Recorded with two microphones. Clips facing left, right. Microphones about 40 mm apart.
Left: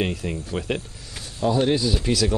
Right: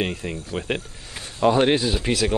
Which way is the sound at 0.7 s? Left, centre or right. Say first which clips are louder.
Even; right.